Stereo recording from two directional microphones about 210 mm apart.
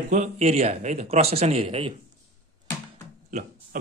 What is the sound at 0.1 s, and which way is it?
Speech, 35° right (ahead or behind).